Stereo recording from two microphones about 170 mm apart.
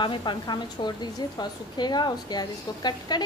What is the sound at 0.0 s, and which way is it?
A woman's voice, 30° left (ahead or behind).